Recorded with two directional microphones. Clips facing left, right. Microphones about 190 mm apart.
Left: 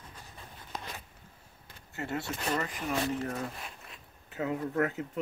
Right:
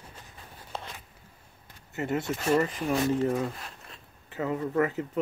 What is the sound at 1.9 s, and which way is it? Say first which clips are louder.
Speech: right 6 dB; 20° right (ahead or behind).